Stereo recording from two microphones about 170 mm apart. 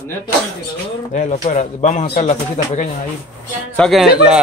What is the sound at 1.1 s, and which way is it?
A man's voice, 45° left (ahead or behind).